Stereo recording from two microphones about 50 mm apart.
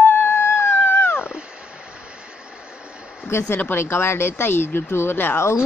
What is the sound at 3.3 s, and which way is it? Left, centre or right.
Speech, left.